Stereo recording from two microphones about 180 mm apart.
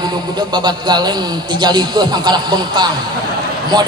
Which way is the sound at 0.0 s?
25° right (ahead or behind).